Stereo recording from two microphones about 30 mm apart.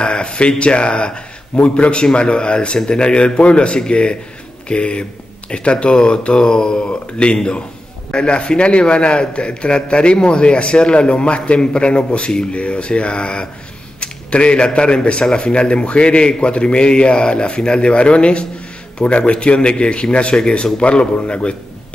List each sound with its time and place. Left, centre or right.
0.0 s a man's voice: left
20.3 s speech: left
20.9 s a man's voice: left